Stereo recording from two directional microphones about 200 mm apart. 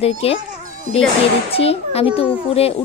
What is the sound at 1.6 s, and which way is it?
Speech, 30° left (ahead or behind).